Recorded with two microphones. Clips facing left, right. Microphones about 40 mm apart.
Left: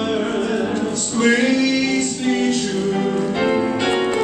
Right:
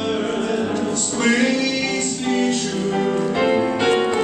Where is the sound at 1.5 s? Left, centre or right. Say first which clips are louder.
Left 3 dB; centre.